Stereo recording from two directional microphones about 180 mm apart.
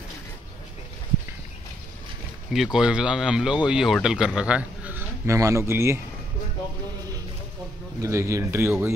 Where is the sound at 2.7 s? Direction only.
5° right (ahead or behind).